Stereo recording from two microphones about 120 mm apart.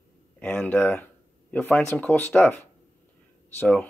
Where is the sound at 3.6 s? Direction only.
15° left (ahead or behind).